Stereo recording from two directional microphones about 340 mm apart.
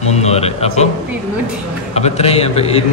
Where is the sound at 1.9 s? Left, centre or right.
Centre.